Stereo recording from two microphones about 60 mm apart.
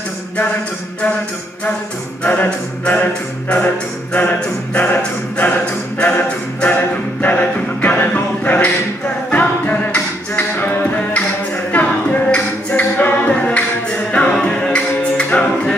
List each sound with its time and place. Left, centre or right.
2.2 s a capella: left
5.9 s a capella: left
14.1 s music: centre